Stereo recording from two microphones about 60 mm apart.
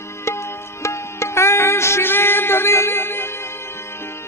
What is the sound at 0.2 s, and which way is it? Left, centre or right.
Music, left.